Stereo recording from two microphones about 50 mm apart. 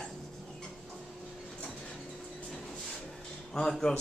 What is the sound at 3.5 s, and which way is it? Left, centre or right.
Speech, centre.